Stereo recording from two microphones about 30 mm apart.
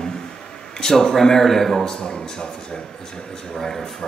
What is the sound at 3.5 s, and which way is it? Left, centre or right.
Speech, centre.